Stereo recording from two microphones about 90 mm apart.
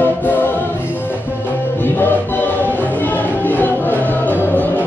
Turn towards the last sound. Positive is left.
turn(degrees=20)  # may be behind; listen again after turning